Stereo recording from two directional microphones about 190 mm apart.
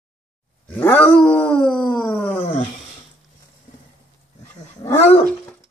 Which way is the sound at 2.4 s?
40° left (ahead or behind).